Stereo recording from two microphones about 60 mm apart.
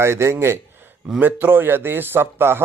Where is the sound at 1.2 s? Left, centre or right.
Right.